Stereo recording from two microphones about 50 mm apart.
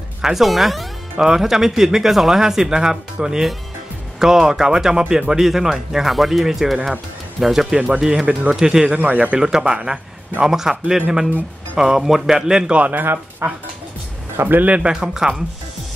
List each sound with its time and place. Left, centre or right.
0.2 s speech: centre
7.7 s a man's voice: right
8.9 s a man's voice: right
9.4 s speech: centre
12.9 s speech: right
14.6 s a man's voice: right
14.9 s speech: centre